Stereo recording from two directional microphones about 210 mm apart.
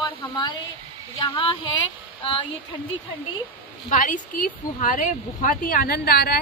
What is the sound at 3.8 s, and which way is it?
Speech, 40° left (ahead or behind).